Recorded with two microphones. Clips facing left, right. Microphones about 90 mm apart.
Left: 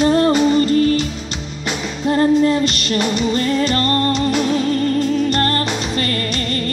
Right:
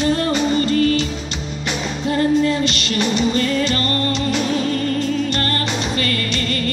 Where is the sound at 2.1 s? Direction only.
40° left (ahead or behind).